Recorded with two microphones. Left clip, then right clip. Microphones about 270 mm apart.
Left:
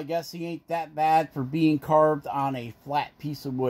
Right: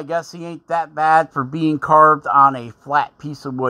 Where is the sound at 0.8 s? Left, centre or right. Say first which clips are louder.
Right 7 dB; right.